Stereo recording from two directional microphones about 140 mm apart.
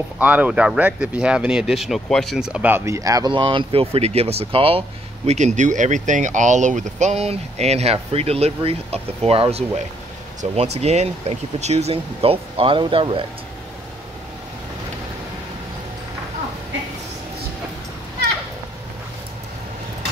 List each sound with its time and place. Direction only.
0.2 s speech: 10° right (ahead or behind); by 13.2 s 35° right (ahead or behind)